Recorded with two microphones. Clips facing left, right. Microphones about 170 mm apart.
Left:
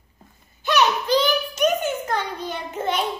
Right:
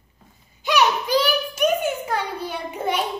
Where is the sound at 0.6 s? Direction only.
10° right (ahead or behind).